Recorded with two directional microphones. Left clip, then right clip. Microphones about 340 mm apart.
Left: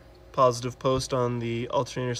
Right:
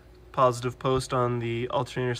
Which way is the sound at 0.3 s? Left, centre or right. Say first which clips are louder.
Left 1 dB; centre.